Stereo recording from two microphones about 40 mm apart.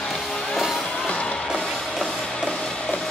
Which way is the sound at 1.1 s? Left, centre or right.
Left.